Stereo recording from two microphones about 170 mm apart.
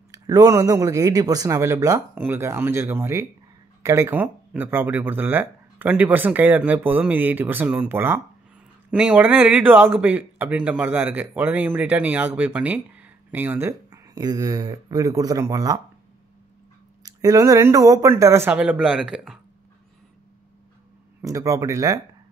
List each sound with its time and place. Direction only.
0.1 s speech: 20° right (ahead or behind)
17.0 s speech: 20° right (ahead or behind); by 19.3 s 5° right (ahead or behind)
21.2 s speech: 20° right (ahead or behind)